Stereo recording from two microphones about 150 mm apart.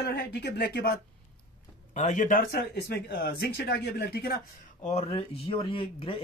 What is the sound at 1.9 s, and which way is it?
Speech, 55° left (ahead or behind).